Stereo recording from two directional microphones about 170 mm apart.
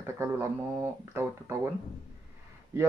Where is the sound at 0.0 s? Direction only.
15° right (ahead or behind).